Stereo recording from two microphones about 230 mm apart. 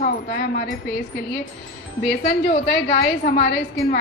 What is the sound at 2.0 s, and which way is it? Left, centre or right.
A woman's voice, left.